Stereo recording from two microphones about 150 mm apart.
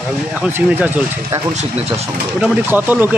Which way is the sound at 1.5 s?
45° right (ahead or behind).